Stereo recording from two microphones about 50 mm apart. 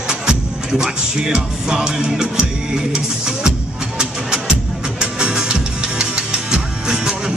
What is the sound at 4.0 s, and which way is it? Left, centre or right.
Music, centre.